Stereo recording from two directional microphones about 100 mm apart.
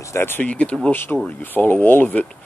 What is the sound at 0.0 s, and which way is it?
Speech, 25° left (ahead or behind).